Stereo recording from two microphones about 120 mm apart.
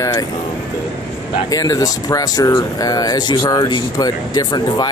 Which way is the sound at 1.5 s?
30° left (ahead or behind).